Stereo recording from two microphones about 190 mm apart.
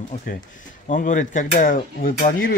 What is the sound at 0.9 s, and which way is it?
Speech, 40° left (ahead or behind).